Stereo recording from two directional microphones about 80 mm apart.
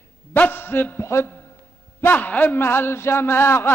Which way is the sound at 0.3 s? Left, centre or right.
Left.